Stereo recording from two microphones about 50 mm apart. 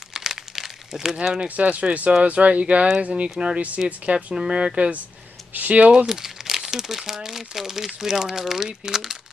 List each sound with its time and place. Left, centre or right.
0.1 s crumpling: centre
1.5 s speech: right
5.5 s speech: right
6.0 s crumpling: centre
7.2 s speech: centre